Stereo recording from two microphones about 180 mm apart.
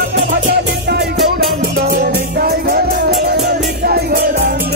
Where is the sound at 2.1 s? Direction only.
60° right (ahead or behind).